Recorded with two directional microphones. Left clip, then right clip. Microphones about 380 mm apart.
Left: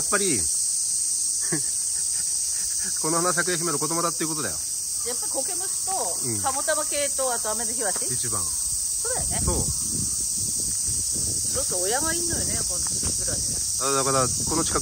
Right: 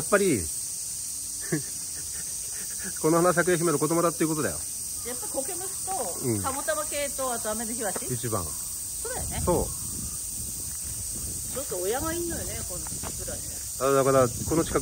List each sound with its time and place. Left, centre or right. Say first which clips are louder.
0.1 s cricket: right 3 dB; centre
3.0 s cricket: right 3 dB; centre
6.4 s snake: left 8 dB; left
11.7 s snake: left 1 dB; left
13.7 s cricket: right 3 dB; centre